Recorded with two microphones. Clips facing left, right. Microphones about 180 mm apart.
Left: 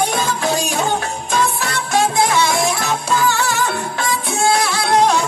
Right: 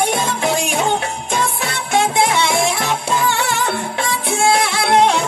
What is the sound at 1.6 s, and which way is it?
Music, 25° right (ahead or behind).